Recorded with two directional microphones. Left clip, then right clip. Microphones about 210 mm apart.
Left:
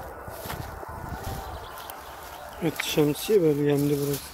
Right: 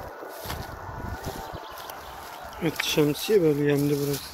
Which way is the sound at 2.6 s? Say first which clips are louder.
Right 1 dB; 5° left (ahead or behind).